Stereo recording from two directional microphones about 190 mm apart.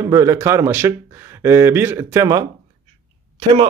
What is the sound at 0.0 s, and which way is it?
Speech, 15° right (ahead or behind).